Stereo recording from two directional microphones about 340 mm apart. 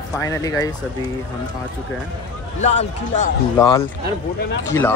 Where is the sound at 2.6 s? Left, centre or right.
Centre.